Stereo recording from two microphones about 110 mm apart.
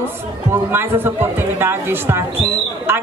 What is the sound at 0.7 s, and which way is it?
Speech, 20° right (ahead or behind).